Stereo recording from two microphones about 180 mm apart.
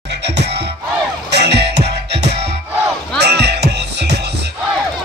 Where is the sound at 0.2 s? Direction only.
70° right (ahead or behind).